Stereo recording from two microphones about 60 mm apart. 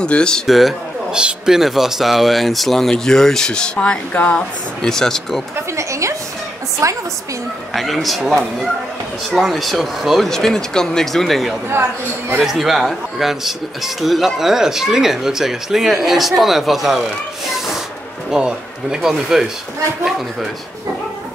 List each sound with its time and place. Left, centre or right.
0.0 s speech: centre
0.5 s speech: centre
1.1 s speech: centre; by 4.4 s left
4.8 s speech: centre
5.8 s a sound: right
6.8 s a woman's voice: right
7.7 s speech: centre
11.7 s a man's voice: right
12.4 s speech: centre
18.3 s speech: centre